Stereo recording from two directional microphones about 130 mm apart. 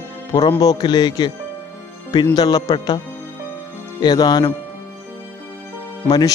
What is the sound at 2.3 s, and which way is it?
Speech, 30° left (ahead or behind).